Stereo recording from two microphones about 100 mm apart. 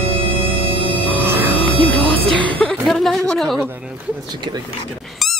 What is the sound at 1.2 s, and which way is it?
Music, 25° right (ahead or behind).